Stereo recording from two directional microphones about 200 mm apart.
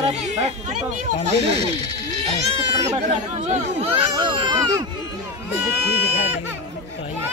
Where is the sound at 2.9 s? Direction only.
35° right (ahead or behind).